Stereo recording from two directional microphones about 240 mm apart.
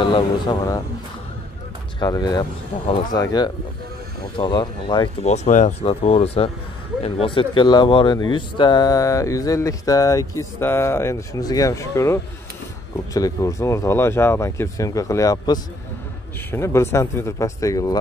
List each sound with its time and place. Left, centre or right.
0.0 s speech: centre
2.0 s speech: centre